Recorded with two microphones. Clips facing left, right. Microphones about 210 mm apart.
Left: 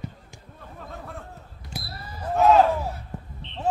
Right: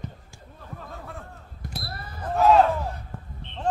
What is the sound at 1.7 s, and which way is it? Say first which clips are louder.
Basketball bounce: left 1 dB; 60° right (ahead or behind).